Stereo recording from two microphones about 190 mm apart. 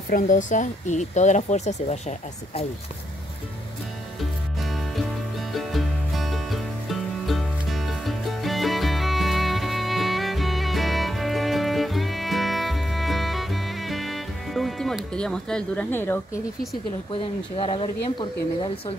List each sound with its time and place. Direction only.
0.1 s speech: 40° left (ahead or behind)
4.6 s music: centre (ahead or behind)
17.1 s speech: 30° left (ahead or behind)